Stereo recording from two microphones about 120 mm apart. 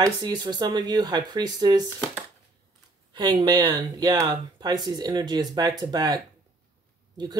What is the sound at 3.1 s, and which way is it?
Speech, 40° right (ahead or behind).